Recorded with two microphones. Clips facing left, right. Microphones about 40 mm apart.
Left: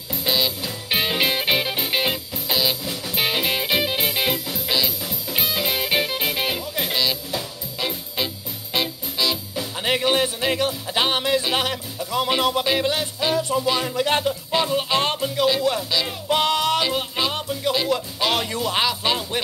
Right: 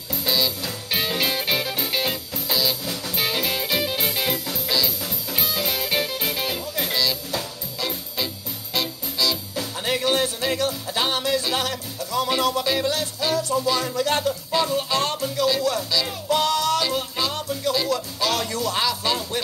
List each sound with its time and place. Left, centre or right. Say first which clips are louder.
0.2 s music: left 1 dB; left
2.8 s music: even; centre
3.2 s music: left 3 dB; left
8.7 s music: left 2 dB; left